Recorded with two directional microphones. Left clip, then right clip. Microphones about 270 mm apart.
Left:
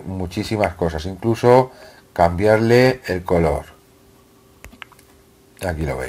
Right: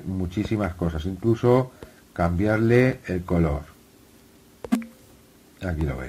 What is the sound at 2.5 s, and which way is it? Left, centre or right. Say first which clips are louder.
Speech: left 6 dB; left.